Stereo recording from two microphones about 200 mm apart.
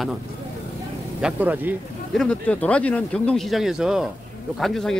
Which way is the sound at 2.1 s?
5° left (ahead or behind).